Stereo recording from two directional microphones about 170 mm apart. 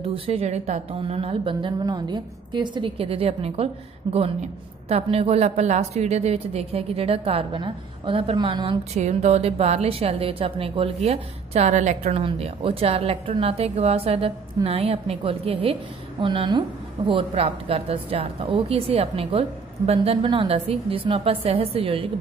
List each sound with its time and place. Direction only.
0.1 s a woman's voice: 35° right (ahead or behind)
8.9 s a woman's voice: 40° right (ahead or behind)